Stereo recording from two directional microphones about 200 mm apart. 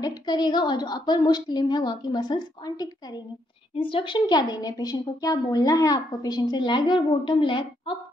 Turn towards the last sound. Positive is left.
turn(degrees=25)  # may be behind; listen again after turning